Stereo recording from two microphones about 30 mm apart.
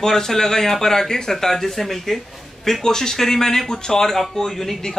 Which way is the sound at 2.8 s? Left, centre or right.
Centre.